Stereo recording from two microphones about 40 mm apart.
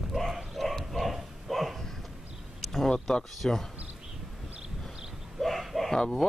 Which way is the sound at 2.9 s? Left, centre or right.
Centre.